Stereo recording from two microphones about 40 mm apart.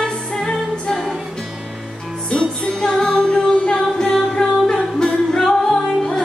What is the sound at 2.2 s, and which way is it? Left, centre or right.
Music, left.